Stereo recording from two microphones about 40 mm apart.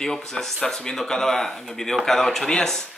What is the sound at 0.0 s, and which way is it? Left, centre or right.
Speech, centre.